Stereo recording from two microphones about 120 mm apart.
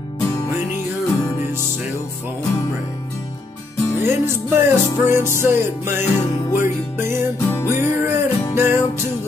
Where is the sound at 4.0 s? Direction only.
20° right (ahead or behind).